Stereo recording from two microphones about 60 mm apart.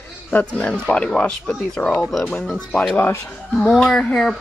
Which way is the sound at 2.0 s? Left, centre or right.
Centre.